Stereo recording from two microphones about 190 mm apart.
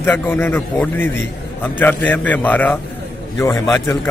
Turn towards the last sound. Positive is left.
turn(degrees=10)  # may be behind; listen again after turning